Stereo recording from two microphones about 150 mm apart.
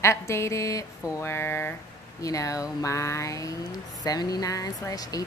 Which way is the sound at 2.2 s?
20° left (ahead or behind).